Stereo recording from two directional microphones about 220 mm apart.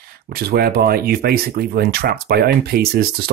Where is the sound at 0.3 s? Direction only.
45° right (ahead or behind).